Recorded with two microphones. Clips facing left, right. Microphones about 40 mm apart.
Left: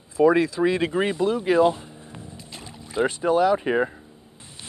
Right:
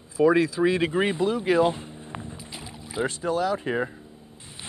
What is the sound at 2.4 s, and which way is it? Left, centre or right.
Boat, centre.